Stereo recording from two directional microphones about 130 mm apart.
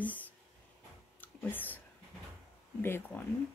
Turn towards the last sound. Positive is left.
turn(degrees=15)  # may be behind; listen again after turning